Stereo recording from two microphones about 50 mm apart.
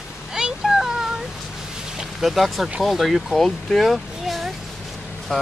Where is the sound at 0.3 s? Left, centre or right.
Centre.